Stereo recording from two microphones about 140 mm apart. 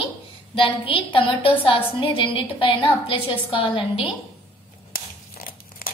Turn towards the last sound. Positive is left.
turn(degrees=90)